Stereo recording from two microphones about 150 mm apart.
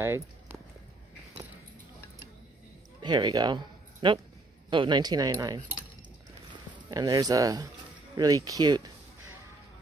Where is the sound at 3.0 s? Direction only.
30° right (ahead or behind).